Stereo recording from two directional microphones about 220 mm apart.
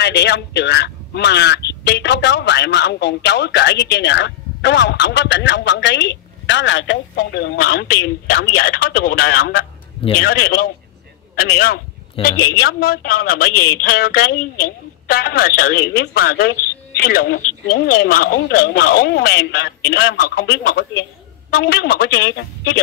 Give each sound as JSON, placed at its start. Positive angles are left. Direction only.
{"t": 0.0, "sound": "speech", "side_deg": 50}